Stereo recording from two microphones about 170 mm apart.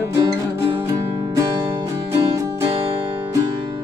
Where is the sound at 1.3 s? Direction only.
20° right (ahead or behind).